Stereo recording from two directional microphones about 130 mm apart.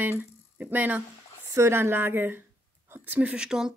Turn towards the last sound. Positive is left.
turn(degrees=-5)  # may be behind; listen again after turning